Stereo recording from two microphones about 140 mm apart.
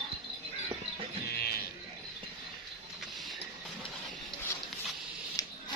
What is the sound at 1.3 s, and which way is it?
Music, 90° left.